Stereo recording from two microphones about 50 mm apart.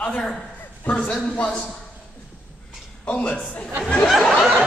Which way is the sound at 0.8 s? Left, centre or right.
Left.